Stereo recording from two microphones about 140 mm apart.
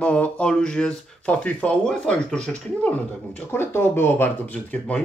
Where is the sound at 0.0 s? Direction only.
10° left (ahead or behind).